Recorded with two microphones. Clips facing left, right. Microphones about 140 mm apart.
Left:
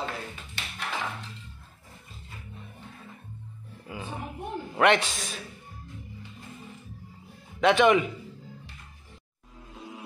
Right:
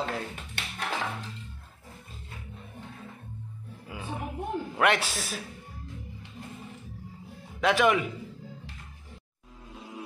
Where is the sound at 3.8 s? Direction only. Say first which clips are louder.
Left 1 dB; 5° right (ahead or behind).